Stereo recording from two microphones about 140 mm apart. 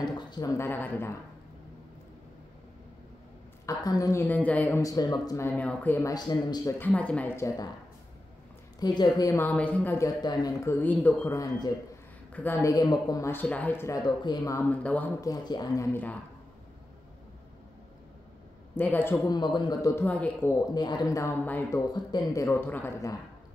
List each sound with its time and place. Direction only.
0.0 s speech: 30° left (ahead or behind)
3.6 s speech: 25° left (ahead or behind)
6.1 s speech: 25° left (ahead or behind)
6.8 s speech: 10° left (ahead or behind)
8.7 s speech: 30° left (ahead or behind)
9.3 s speech: 10° left (ahead or behind)
9.9 s speech: 25° left (ahead or behind)
13.3 s speech: 10° left (ahead or behind)
15.1 s speech: 25° left (ahead or behind)
18.8 s speech: 15° left (ahead or behind)
19.2 s speech: 30° left (ahead or behind)
20.1 s speech: 10° left (ahead or behind)
20.7 s speech: 30° left (ahead or behind); by 21.8 s 15° left (ahead or behind)
21.9 s speech: 25° left (ahead or behind)